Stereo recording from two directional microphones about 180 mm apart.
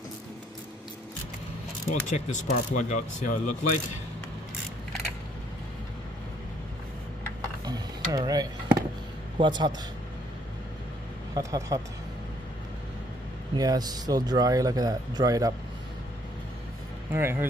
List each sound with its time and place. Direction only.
1.9 s speech: 40° left (ahead or behind)
7.6 s a sound: 20° right (ahead or behind)
9.4 s speech: 25° right (ahead or behind)
11.3 s speech: 20° right (ahead or behind)
13.6 s speech: 20° right (ahead or behind)
17.1 s speech: 10° right (ahead or behind)